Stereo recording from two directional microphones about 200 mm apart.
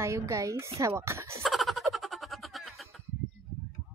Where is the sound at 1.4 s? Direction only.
Centre (ahead or behind).